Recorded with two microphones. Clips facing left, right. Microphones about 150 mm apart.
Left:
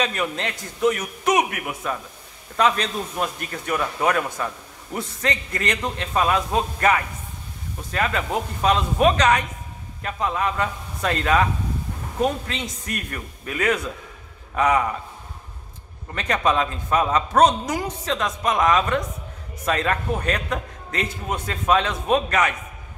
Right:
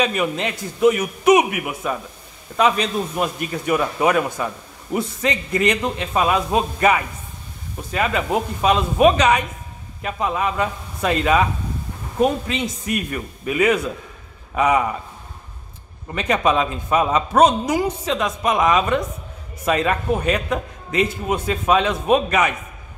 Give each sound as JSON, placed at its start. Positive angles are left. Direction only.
{"t": 0.0, "sound": "a man's voice", "side_deg": -10}
{"t": 16.1, "sound": "speech", "side_deg": -10}